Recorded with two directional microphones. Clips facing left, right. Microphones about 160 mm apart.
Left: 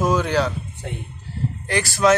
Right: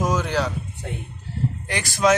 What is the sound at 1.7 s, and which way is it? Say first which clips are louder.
Speech: left 2 dB; 15° right (ahead or behind).